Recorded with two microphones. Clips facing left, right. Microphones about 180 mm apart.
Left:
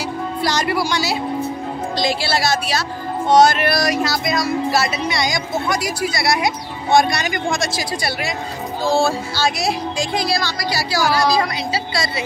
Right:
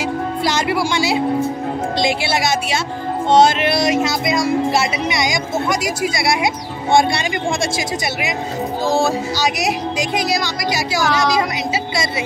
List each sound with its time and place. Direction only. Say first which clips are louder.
0.4 s speech: even; 20° right (ahead or behind)
3.3 s speech: even; 25° right (ahead or behind)